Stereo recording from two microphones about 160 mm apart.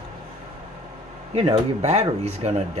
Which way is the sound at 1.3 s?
35° right (ahead or behind).